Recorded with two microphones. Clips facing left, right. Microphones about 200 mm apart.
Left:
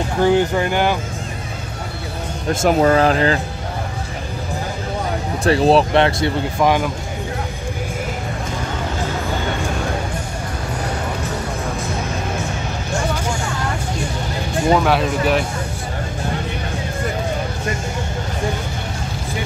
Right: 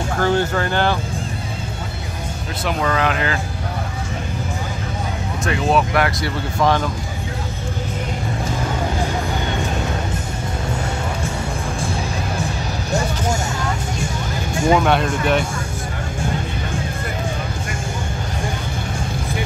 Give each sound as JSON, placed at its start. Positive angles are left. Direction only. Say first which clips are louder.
{"t": 0.2, "sound": "speech", "louder": "left 4 dB", "side_deg": 15}
{"t": 2.6, "sound": "speech", "louder": "left 6 dB", "side_deg": 40}
{"t": 5.4, "sound": "speech", "louder": "left 5 dB", "side_deg": 35}
{"t": 6.6, "sound": "speech", "louder": "left 1 dB", "side_deg": 15}
{"t": 14.7, "sound": "speech", "louder": "even", "side_deg": 0}